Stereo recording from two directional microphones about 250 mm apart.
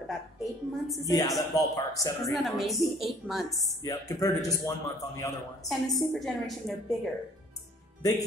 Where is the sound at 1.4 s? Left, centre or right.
Centre.